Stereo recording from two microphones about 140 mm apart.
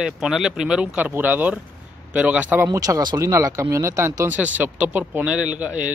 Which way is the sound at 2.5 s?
20° right (ahead or behind).